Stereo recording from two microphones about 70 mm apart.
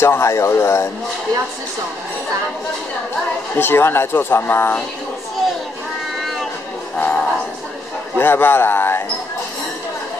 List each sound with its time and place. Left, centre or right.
0.0 s speech: left
3.5 s speech: left
7.0 s music: centre
8.2 s speech: left